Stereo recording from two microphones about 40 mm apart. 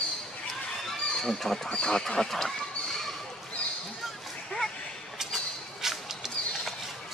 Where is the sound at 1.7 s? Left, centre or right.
Left.